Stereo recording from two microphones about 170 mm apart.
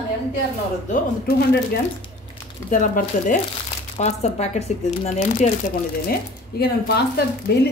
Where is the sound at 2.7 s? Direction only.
50° left (ahead or behind).